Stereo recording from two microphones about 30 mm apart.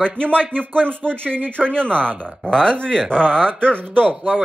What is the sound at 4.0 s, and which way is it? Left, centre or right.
Speech, right.